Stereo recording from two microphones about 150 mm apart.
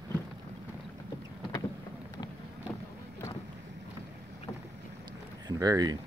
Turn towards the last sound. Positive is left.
turn(degrees=-25)  # may be behind; listen again after turning